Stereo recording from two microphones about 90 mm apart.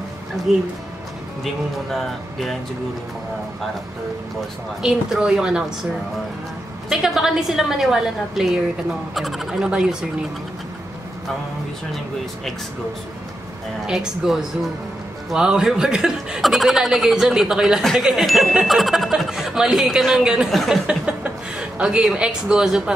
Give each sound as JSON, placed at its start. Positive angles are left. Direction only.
{"t": 0.5, "sound": "speech", "side_deg": -5}
{"t": 4.8, "sound": "a woman's voice", "side_deg": -5}
{"t": 6.9, "sound": "speech", "side_deg": -5}
{"t": 13.8, "sound": "a woman's voice", "side_deg": -5}